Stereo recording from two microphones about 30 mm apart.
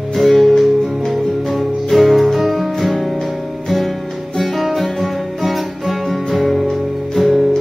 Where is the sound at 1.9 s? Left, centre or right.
Centre.